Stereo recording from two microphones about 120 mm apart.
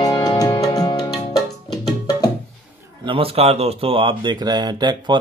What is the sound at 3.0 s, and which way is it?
Speech, 50° right (ahead or behind).